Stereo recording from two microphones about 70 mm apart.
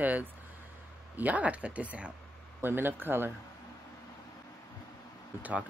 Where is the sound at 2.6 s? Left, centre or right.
Right.